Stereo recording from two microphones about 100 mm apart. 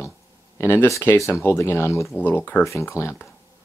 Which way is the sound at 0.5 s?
25° left (ahead or behind).